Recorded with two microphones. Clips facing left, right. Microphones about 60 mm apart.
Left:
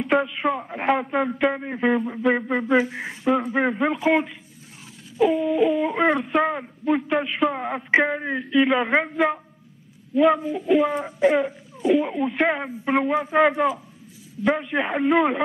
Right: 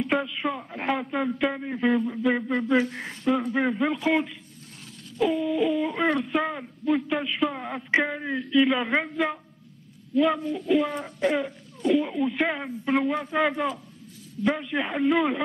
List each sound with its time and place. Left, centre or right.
0.2 s speech: centre
2.5 s speech: centre
6.4 s speech: centre